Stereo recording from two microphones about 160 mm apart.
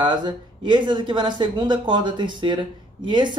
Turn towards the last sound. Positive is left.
turn(degrees=-30)  # may be behind; listen again after turning